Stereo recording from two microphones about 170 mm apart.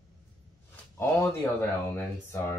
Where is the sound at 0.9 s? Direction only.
15° left (ahead or behind).